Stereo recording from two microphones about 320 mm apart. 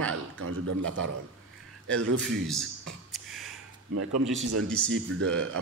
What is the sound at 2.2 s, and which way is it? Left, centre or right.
Speech, centre.